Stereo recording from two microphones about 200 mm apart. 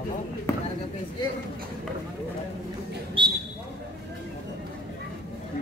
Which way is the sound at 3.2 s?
25° right (ahead or behind).